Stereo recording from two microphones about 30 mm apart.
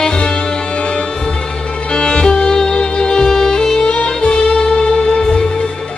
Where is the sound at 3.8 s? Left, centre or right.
Left.